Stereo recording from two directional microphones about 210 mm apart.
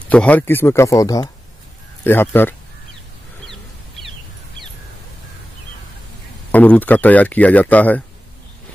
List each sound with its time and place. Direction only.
0.1 s speech: 5° left (ahead or behind)
6.5 s speech: 10° left (ahead or behind)